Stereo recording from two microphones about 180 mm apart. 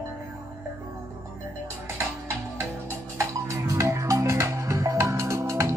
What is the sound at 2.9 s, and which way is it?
Music, 15° right (ahead or behind).